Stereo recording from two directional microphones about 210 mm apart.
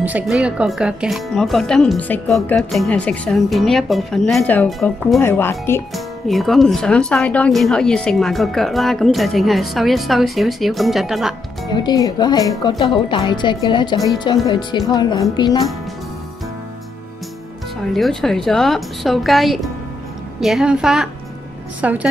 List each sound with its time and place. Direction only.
0.0 s speech: 5° right (ahead or behind)
5.2 s speech: 10° left (ahead or behind)
5.9 s speech: centre (ahead or behind)
11.7 s a woman's voice: 20° left (ahead or behind)
17.9 s a woman's voice: centre (ahead or behind)